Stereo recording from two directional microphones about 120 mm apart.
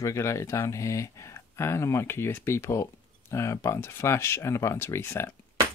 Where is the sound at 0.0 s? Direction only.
25° left (ahead or behind).